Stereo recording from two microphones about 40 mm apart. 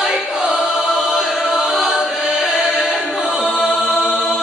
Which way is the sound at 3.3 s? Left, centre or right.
Centre.